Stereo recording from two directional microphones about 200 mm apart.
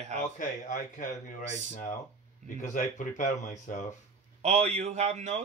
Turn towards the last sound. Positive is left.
turn(degrees=-35)  # may be behind; listen again after turning